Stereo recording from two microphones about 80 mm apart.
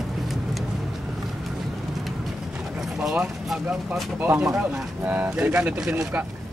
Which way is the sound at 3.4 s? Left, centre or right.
Centre.